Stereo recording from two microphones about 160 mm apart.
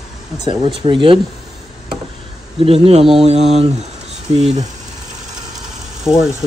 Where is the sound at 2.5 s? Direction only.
35° right (ahead or behind).